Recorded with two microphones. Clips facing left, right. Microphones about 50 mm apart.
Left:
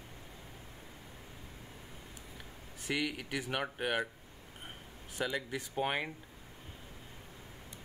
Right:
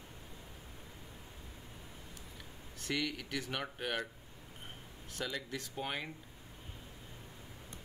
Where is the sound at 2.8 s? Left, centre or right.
Centre.